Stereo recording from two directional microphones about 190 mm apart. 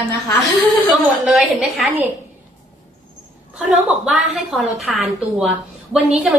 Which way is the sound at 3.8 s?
Centre (ahead or behind).